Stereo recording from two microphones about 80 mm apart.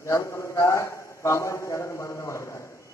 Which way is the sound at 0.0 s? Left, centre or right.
Left.